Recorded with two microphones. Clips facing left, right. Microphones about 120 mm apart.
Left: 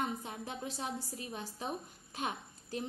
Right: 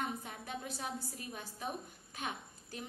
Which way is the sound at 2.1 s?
30° left (ahead or behind).